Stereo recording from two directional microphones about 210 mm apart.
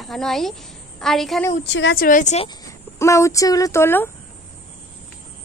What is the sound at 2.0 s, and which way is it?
Speech, 35° left (ahead or behind).